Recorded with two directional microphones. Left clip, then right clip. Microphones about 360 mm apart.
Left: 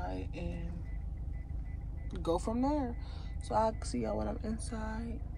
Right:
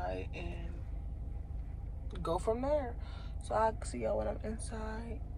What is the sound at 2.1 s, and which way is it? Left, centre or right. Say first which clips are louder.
Speech: even; centre.